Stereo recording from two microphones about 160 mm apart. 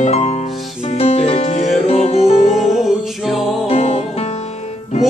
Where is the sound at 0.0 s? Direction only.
45° left (ahead or behind).